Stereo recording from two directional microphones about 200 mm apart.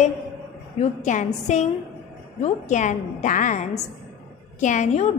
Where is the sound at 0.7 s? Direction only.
35° left (ahead or behind).